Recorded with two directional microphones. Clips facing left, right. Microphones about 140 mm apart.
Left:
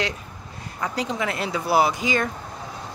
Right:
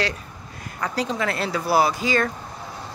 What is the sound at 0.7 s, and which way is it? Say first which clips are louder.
Speech: right 1 dB; 15° left (ahead or behind).